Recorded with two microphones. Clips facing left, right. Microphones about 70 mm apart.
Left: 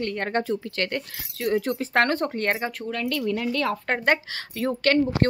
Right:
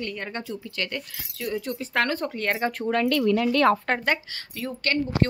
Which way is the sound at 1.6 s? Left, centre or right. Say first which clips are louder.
Left 5 dB; left.